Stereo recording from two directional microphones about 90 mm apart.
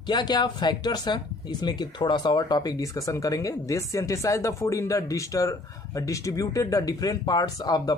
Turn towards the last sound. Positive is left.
turn(degrees=50)  # may be behind; listen again after turning